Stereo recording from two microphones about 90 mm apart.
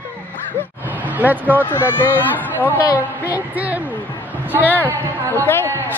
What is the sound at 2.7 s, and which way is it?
A woman's voice, 20° right (ahead or behind).